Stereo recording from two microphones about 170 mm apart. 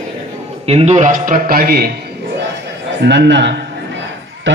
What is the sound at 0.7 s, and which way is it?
A man's voice, 40° right (ahead or behind).